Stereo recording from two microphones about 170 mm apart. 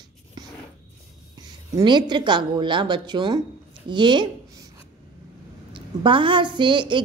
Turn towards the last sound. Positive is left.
turn(degrees=-30)  # may be behind; listen again after turning